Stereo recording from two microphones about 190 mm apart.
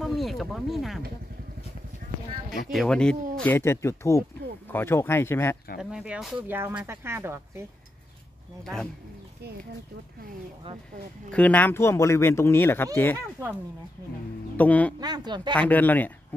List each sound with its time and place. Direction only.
0.0 s speech: centre (ahead or behind)
2.7 s speech: centre (ahead or behind)
5.8 s speech: 5° right (ahead or behind)
11.2 s speech: 5° left (ahead or behind)
14.6 s speech: 10° left (ahead or behind)
15.0 s speech: 20° right (ahead or behind)
15.7 s speech: 10° left (ahead or behind)